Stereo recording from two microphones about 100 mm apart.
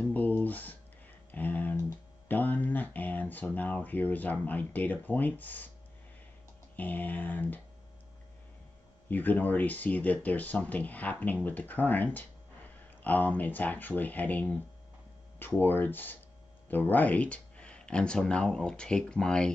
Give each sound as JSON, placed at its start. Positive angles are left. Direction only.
{"t": 0.0, "sound": "a sound", "side_deg": 15}
{"t": 1.3, "sound": "typing", "side_deg": 15}
{"t": 2.2, "sound": "speech", "side_deg": 15}
{"t": 6.8, "sound": "speech", "side_deg": 15}
{"t": 9.1, "sound": "speech", "side_deg": 15}